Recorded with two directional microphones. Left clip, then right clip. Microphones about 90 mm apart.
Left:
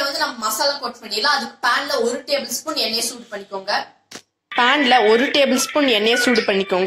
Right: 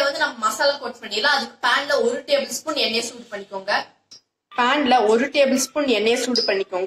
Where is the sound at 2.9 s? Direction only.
40° right (ahead or behind).